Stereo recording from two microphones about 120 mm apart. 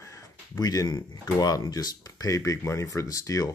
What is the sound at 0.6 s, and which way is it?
Speech, 35° left (ahead or behind).